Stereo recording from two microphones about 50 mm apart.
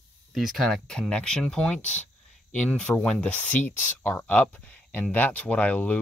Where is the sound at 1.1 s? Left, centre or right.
Centre.